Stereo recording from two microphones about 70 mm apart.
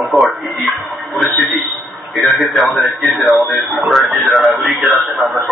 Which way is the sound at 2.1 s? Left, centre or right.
Centre.